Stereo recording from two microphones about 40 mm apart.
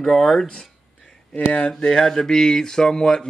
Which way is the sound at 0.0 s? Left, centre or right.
Centre.